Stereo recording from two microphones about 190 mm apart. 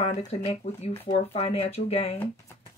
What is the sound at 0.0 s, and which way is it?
Speech, 35° left (ahead or behind).